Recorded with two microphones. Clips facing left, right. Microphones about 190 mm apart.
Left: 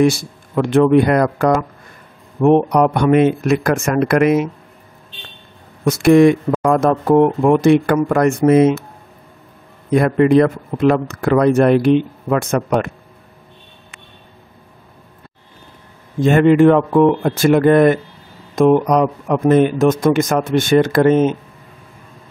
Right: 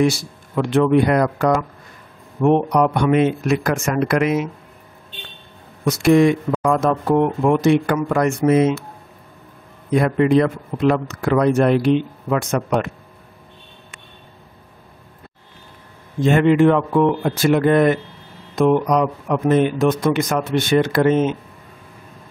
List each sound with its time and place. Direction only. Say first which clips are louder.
0.6 s speech: left 3 dB; 50° left (ahead or behind)
5.9 s speech: left 4 dB; 55° left (ahead or behind)
9.9 s speech: left 3 dB; 50° left (ahead or behind)
16.2 s speech: left 3 dB; 50° left (ahead or behind)